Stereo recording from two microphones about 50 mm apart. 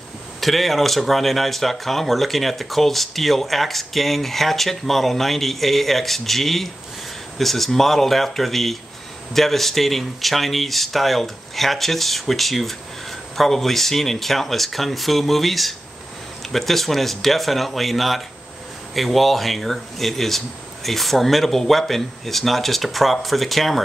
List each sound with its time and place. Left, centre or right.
0.4 s speech: centre